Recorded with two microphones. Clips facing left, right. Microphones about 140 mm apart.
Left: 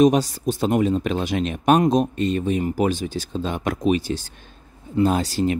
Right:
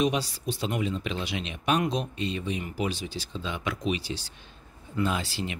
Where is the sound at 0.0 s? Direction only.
45° left (ahead or behind).